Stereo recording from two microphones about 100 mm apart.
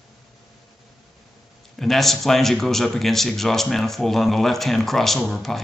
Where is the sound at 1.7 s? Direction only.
Centre (ahead or behind).